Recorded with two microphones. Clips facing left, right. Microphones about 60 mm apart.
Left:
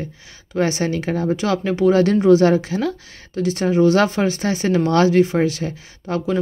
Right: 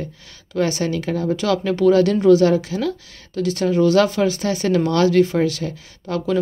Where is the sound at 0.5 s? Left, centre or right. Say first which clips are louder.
Left 1 dB; left.